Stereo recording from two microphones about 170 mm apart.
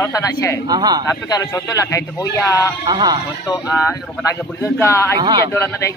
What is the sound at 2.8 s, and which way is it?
Speech, 25° right (ahead or behind).